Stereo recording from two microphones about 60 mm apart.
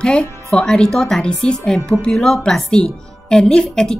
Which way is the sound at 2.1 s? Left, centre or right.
Centre.